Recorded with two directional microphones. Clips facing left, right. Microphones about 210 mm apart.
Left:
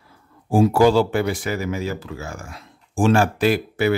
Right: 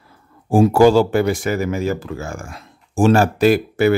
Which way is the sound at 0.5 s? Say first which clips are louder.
Right 3 dB; 50° right (ahead or behind).